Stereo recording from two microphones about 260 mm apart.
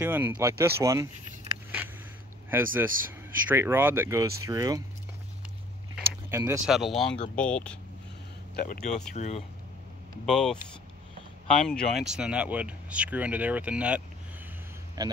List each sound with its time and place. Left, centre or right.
0.0 s speech: centre
2.5 s speech: centre
5.9 s a sound: centre
6.7 s speech: centre
8.6 s speech: left
10.2 s speech: centre